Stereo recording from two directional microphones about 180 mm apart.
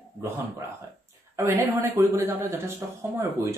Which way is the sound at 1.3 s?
15° right (ahead or behind).